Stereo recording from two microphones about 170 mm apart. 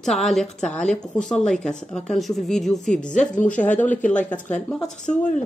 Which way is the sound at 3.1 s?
45° left (ahead or behind).